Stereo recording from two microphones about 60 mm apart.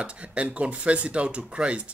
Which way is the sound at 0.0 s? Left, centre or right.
Centre.